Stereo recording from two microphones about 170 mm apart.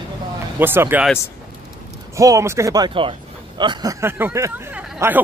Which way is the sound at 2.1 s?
20° right (ahead or behind).